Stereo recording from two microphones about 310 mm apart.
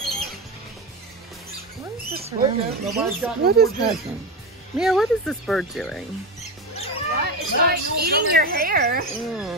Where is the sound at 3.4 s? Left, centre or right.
Right.